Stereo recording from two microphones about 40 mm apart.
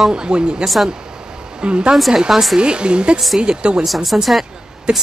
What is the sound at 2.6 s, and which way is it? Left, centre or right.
Speech, right.